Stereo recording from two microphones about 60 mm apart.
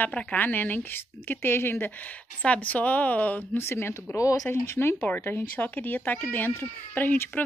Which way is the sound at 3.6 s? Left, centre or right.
Left.